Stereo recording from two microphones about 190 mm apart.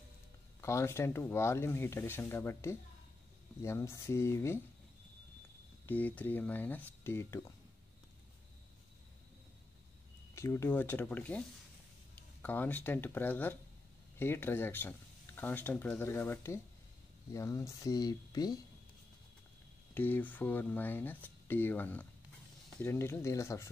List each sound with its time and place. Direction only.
0.6 s speech: 15° left (ahead or behind)
5.9 s speech: 10° left (ahead or behind)
10.3 s speech: 15° left (ahead or behind)
19.9 s speech: 10° left (ahead or behind)